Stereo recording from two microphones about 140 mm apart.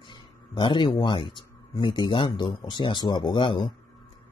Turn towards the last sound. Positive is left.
turn(degrees=35)  # may be behind; listen again after turning